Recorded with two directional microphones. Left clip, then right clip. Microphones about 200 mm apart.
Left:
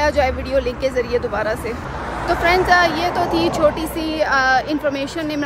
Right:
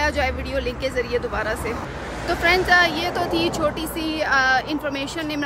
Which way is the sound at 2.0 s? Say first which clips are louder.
Left 6 dB; 20° left (ahead or behind).